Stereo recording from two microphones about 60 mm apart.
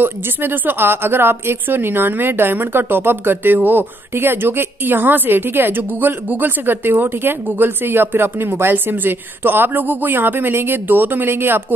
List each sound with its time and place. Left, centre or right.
0.0 s a woman's voice: right